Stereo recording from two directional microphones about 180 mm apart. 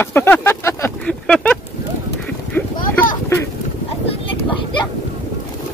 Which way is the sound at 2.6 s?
10° left (ahead or behind).